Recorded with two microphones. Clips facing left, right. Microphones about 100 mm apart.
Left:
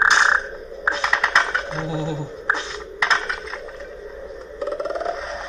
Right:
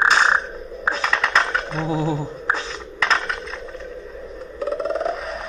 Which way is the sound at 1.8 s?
40° right (ahead or behind).